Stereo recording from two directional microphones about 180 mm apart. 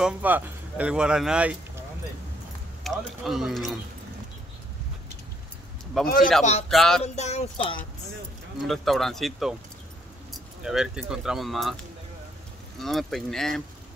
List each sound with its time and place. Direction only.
0.0 s speech: 10° right (ahead or behind)
2.8 s speech: centre (ahead or behind)
6.1 s speech: centre (ahead or behind)
7.0 s speech: 35° left (ahead or behind)
8.6 s speech: centre (ahead or behind)
12.8 s speech: centre (ahead or behind)